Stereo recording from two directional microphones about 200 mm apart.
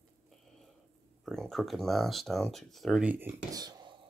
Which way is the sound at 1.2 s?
Centre (ahead or behind).